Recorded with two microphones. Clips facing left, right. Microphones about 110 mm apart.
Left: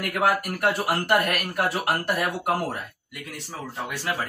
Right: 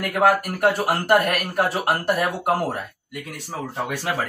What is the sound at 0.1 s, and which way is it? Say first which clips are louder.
Speech: right 5 dB; 40° right (ahead or behind).